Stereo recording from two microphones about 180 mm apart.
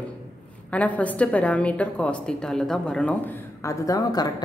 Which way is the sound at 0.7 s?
10° left (ahead or behind).